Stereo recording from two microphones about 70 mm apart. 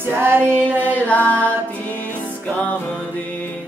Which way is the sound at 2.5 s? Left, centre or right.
Left.